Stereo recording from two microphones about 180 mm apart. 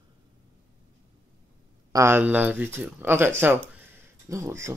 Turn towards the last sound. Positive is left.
turn(degrees=-15)  # may be behind; listen again after turning